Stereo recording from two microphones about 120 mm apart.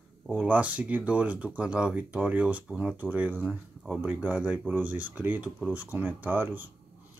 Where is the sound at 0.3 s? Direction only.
10° right (ahead or behind).